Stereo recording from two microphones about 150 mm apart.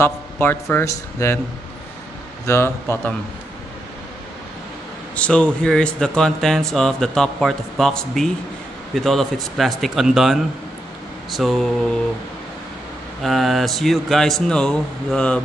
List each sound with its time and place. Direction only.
0.0 s a man's voice: 15° left (ahead or behind)
2.4 s a man's voice: 15° left (ahead or behind)
5.1 s speech: 5° left (ahead or behind)
13.2 s speech: centre (ahead or behind)